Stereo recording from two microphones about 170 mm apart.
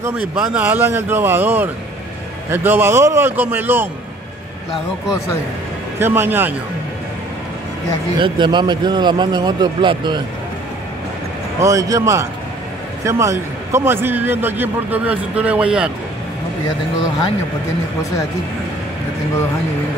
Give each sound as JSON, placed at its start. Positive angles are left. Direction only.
{"t": 0.0, "sound": "a man's voice", "side_deg": -10}
{"t": 5.9, "sound": "a man's voice", "side_deg": -15}
{"t": 8.2, "sound": "a man's voice", "side_deg": -25}
{"t": 11.6, "sound": "a man's voice", "side_deg": -20}